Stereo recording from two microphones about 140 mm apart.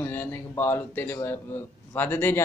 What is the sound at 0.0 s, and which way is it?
Speech, 15° left (ahead or behind).